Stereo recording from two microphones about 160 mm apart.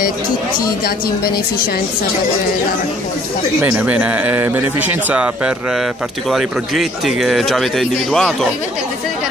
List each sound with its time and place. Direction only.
0.8 s speech: 75° left (ahead or behind)
3.6 s speech: 10° right (ahead or behind)